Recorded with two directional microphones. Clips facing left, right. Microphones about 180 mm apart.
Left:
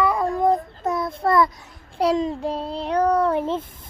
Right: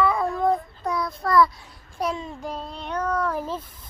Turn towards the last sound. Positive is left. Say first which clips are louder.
# left 6 dB
turn(degrees=25)  # may be behind; listen again after turning